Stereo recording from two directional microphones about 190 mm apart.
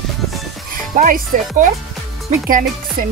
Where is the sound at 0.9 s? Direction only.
45° right (ahead or behind).